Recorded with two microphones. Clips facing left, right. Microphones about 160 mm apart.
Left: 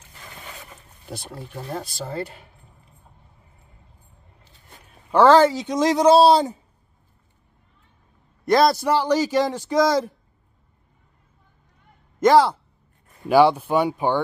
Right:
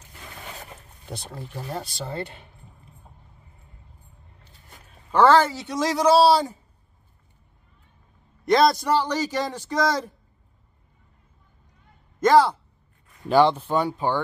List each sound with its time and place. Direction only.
2.0 s speech: 5° left (ahead or behind)
5.1 s a man's voice: 15° left (ahead or behind)
8.5 s speech: 5° left (ahead or behind)
12.2 s speech: 10° left (ahead or behind)